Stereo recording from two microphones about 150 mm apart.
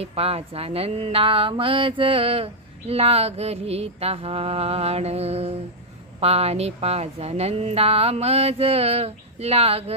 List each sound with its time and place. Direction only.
0.0 s speech: 40° right (ahead or behind)